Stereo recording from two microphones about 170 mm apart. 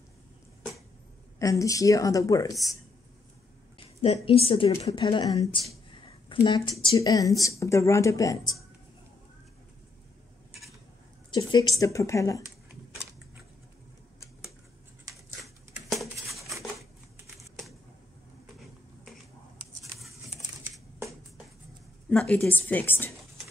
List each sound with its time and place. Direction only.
1.4 s a woman's voice: 20° left (ahead or behind)
3.7 s a woman's voice: 35° left (ahead or behind)
11.2 s a woman's voice: 25° left (ahead or behind)
15.4 s a sound: centre (ahead or behind)
17.4 s typing: centre (ahead or behind)
20.0 s a sound: centre (ahead or behind)
22.1 s a woman's voice: 5° left (ahead or behind)